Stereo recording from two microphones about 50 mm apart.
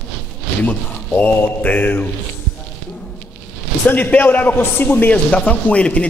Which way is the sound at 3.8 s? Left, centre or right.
Left.